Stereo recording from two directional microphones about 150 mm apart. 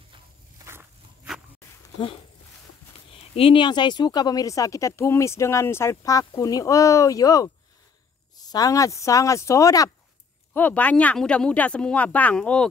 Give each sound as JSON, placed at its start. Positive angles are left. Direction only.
{"t": 3.1, "sound": "speech", "side_deg": 40}
{"t": 10.5, "sound": "speech", "side_deg": 10}